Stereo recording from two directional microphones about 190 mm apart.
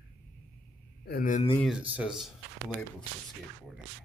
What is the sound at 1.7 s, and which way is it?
Speech, 5° right (ahead or behind).